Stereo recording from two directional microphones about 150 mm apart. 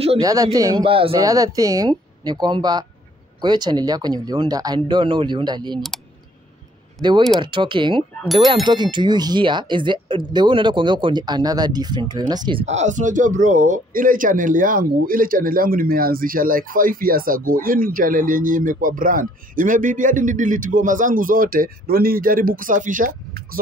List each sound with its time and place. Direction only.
0.2 s speech: 25° right (ahead or behind)
0.8 s speech: 35° right (ahead or behind)
1.2 s speech: 25° right (ahead or behind)
7.0 s speech: 30° right (ahead or behind)
12.6 s speech: 50° right (ahead or behind)